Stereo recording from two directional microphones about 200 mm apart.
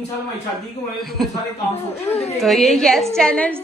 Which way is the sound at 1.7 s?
30° left (ahead or behind).